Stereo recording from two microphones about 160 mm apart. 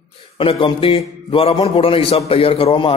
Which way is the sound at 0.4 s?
35° left (ahead or behind).